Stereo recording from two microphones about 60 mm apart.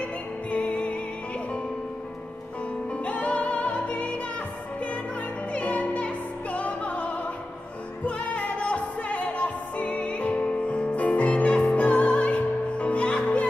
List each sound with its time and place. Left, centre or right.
0.5 s music: left
3.0 s music: left
5.5 s music: left
8.2 s music: left